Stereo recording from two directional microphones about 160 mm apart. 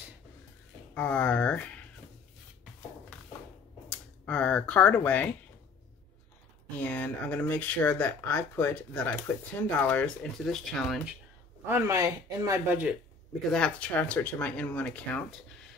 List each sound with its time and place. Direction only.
0.9 s speech: 10° left (ahead or behind)
3.9 s speech: 5° left (ahead or behind)
6.8 s speech: 10° left (ahead or behind)
11.6 s a man's voice: 15° right (ahead or behind)
13.5 s speech: 5° left (ahead or behind)